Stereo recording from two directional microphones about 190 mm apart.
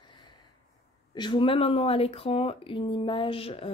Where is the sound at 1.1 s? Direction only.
25° left (ahead or behind).